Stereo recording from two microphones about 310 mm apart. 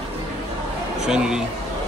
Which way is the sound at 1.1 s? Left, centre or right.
Centre.